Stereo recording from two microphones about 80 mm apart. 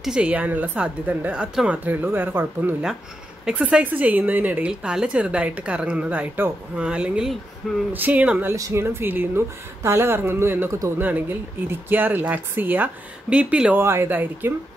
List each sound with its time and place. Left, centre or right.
0.0 s a woman's voice: centre
1.9 s speech: right
3.4 s a woman's voice: centre
8.5 s speech: right
8.8 s speech: right
13.7 s speech: right